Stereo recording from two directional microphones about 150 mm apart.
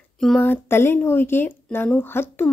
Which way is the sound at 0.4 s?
15° left (ahead or behind).